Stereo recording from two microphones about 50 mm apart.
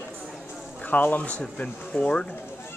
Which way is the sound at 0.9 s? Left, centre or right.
Left.